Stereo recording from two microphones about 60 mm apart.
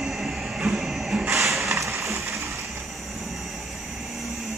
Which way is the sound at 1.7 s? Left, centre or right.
Right.